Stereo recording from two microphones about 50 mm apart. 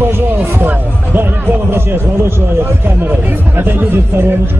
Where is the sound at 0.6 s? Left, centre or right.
Right.